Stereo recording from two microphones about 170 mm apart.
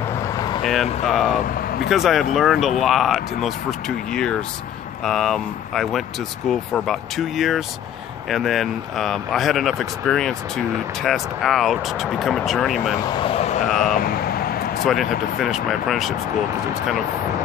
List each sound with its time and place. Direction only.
0.1 s vehicle: 20° left (ahead or behind)
0.6 s speech: centre (ahead or behind)
1.5 s speech: 55° left (ahead or behind)
1.9 s speech: centre (ahead or behind)
13.0 s vehicle: 30° left (ahead or behind)
13.7 s speech: centre (ahead or behind)
13.9 s vehicle: 60° left (ahead or behind)
14.9 s speech: centre (ahead or behind)